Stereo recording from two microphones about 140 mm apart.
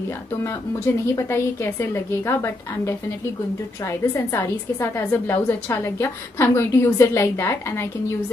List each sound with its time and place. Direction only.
0.4 s a woman's voice: 20° left (ahead or behind)